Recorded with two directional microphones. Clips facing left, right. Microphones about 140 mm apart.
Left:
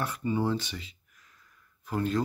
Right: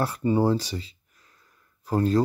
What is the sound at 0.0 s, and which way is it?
Speech, 35° right (ahead or behind).